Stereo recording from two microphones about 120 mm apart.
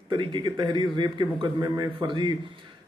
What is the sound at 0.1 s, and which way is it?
A man's voice, 40° right (ahead or behind).